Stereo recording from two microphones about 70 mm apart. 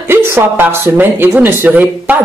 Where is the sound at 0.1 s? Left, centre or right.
Right.